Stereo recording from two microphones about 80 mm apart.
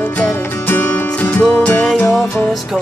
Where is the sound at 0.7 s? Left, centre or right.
Left.